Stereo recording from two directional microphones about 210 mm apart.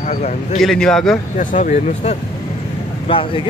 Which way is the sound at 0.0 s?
35° left (ahead or behind).